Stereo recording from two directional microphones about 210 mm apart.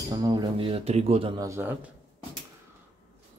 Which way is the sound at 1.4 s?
10° right (ahead or behind).